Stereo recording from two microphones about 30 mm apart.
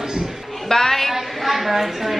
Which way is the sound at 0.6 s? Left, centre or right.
Centre.